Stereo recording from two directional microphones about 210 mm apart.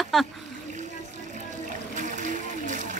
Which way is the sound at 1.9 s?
35° right (ahead or behind).